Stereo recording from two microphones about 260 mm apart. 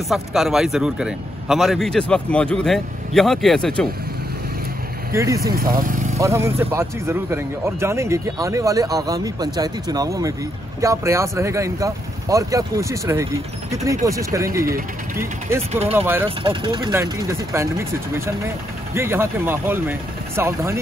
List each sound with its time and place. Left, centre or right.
0.1 s a man's voice: centre
5.1 s speech: centre
5.4 s speech: right
6.1 s speech: centre
15.9 s speech: centre
16.3 s speech: centre